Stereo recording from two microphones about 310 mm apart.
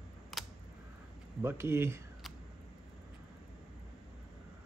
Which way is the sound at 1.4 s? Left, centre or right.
Centre.